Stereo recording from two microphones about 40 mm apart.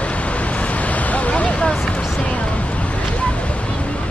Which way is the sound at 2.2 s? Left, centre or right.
Left.